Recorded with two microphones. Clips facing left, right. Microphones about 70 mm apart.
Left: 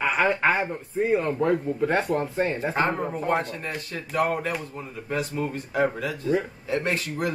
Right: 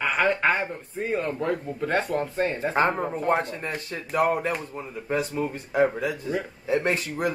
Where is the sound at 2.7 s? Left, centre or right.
Right.